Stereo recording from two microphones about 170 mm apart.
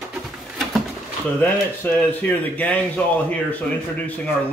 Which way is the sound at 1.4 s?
10° left (ahead or behind).